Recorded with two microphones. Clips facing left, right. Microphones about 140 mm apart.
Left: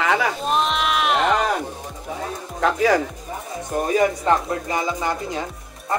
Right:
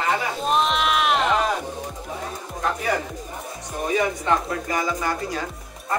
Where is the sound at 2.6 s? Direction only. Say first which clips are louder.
Left 6 dB; 90° left.